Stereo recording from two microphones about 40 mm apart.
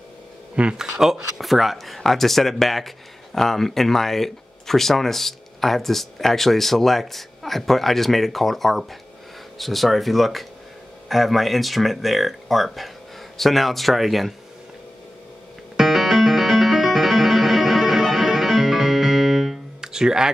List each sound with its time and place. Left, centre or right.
0.7 s speech: centre
15.7 s music: centre
19.8 s music: centre